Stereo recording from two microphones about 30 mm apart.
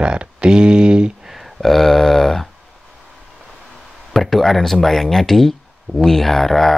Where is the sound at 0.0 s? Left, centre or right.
Right.